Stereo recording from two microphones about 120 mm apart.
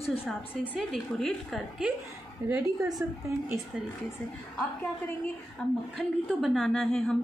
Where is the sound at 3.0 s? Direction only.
20° right (ahead or behind).